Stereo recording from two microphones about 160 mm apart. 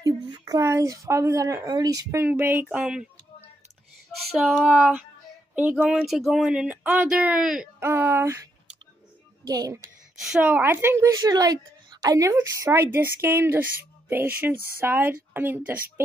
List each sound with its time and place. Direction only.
0.0 s speech: 20° right (ahead or behind); by 3.1 s 5° right (ahead or behind)
4.4 s speech: centre (ahead or behind)
7.9 s speech: 15° right (ahead or behind)
9.5 s speech: 25° right (ahead or behind)
10.2 s speech: 5° right (ahead or behind)